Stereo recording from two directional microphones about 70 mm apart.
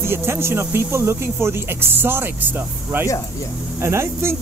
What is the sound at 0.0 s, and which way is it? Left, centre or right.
Speech, right.